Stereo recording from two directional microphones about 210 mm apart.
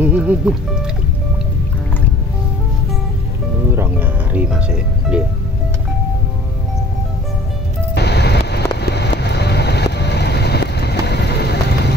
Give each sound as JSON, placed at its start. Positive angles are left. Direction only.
{"t": 0.0, "sound": "speech", "side_deg": -5}
{"t": 3.7, "sound": "music", "side_deg": -10}
{"t": 7.9, "sound": "vehicle", "side_deg": 55}